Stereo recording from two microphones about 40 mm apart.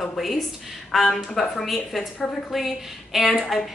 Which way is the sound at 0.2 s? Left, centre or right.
Centre.